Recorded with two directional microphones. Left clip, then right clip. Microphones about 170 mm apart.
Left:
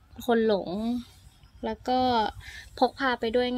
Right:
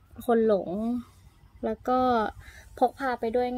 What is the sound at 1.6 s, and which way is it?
Speech, 45° right (ahead or behind).